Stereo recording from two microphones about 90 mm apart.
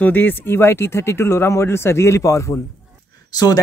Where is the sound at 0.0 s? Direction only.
20° left (ahead or behind).